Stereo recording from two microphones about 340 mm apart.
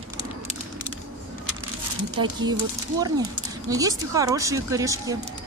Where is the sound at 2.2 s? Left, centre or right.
Centre.